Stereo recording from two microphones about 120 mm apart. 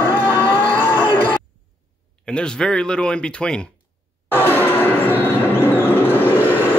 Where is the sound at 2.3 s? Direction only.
5° left (ahead or behind).